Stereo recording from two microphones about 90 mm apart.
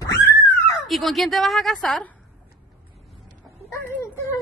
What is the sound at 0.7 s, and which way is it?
A woman's voice, centre (ahead or behind).